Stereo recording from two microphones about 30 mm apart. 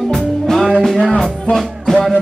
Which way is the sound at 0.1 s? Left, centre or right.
Centre.